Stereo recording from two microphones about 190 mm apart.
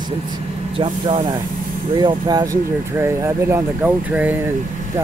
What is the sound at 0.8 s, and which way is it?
Speech, 30° right (ahead or behind).